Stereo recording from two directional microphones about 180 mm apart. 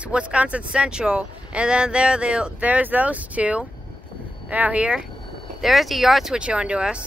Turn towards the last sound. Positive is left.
turn(degrees=-5)  # may be behind; listen again after turning